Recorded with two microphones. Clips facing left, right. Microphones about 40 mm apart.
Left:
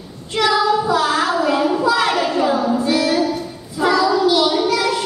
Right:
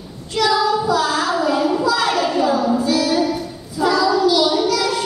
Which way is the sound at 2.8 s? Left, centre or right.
Left.